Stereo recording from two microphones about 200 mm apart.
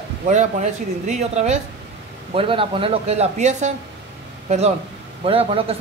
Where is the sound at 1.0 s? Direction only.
35° right (ahead or behind).